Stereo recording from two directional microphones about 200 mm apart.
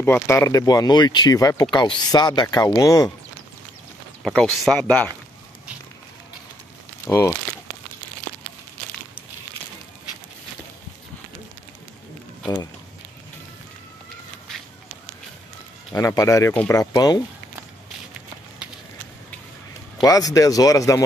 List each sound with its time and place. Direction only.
0.0 s speech: 10° left (ahead or behind)
4.2 s speech: centre (ahead or behind)
7.1 s speech: 10° left (ahead or behind)
15.9 s speech: 15° left (ahead or behind)
20.0 s speech: 15° left (ahead or behind)